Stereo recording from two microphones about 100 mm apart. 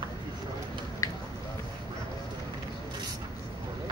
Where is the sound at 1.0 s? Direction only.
35° left (ahead or behind).